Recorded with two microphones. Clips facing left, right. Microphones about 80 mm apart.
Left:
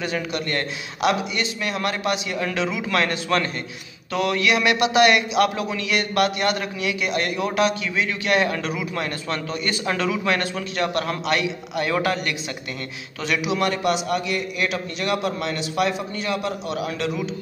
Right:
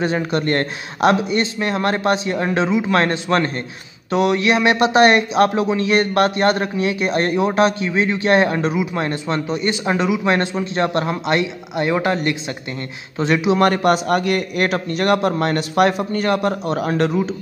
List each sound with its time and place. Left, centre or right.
0.0 s a man's voice: right
13.7 s a man's voice: right